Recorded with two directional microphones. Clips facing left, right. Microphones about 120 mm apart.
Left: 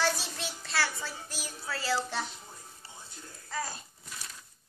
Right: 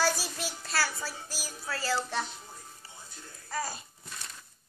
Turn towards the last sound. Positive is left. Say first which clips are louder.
# right 2 dB
turn(degrees=-5)  # may be behind; listen again after turning